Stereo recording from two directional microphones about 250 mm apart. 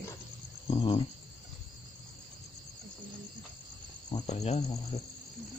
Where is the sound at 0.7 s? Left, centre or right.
Left.